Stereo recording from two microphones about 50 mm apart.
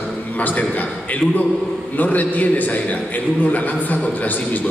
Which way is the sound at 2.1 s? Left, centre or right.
Left.